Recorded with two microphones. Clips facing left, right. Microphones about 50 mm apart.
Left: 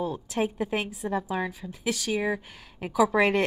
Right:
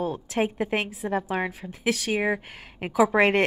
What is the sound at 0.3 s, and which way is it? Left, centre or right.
A woman's voice, right.